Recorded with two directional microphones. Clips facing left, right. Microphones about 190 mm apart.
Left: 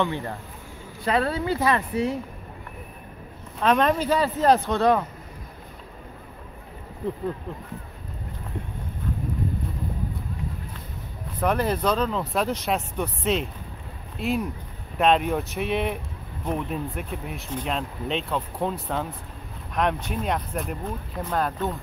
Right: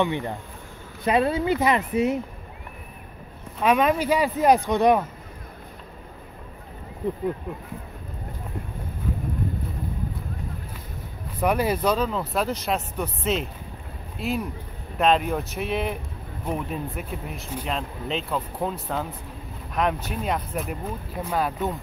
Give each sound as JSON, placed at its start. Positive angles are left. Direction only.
{"t": 0.0, "sound": "a woman's voice", "side_deg": -15}
{"t": 3.6, "sound": "speech", "side_deg": -10}
{"t": 11.4, "sound": "speech", "side_deg": -10}